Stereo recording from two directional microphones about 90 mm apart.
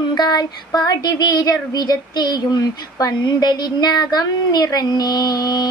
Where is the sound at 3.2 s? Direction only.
55° left (ahead or behind).